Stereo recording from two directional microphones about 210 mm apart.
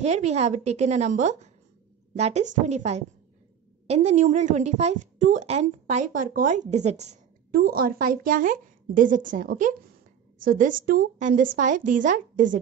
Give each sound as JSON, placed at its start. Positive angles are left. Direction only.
{"t": 0.0, "sound": "a woman's voice", "side_deg": -30}
{"t": 7.5, "sound": "a woman's voice", "side_deg": -45}